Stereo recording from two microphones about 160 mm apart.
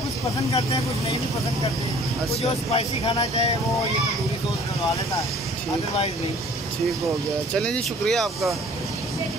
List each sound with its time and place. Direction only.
2.7 s speech: 35° left (ahead or behind)
7.5 s speech: 5° left (ahead or behind)